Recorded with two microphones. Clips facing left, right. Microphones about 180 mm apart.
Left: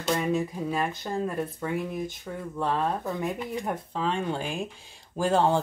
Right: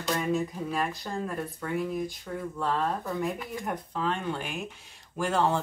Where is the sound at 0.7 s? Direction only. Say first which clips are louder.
Left 2 dB; 20° left (ahead or behind).